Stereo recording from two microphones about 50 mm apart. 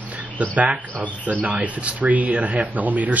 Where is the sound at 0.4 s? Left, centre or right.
Right.